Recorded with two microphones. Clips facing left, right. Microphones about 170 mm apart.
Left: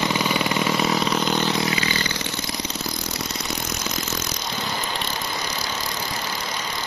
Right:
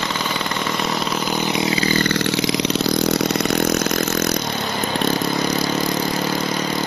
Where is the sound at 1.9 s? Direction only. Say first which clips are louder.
Right 9 dB; 65° right (ahead or behind).